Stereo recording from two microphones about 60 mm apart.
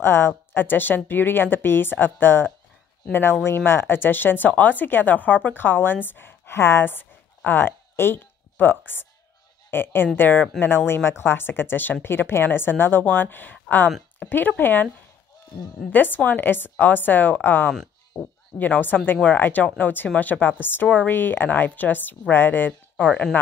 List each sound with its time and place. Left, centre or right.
0.0 s speech: left
15.9 s speech: left
18.1 s speech: left
18.6 s speech: left
22.7 s speech: left